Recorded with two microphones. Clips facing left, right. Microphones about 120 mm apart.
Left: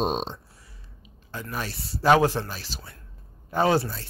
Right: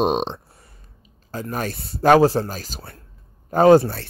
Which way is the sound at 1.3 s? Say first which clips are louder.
Right 6 dB; 40° right (ahead or behind).